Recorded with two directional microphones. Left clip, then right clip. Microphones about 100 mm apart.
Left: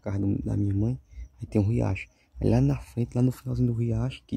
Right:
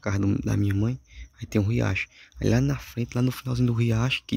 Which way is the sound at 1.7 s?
Centre (ahead or behind).